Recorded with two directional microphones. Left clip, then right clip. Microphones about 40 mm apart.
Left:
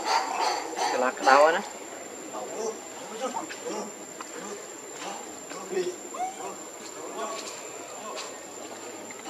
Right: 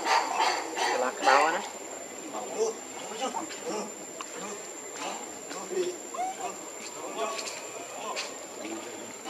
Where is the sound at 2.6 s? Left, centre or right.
Right.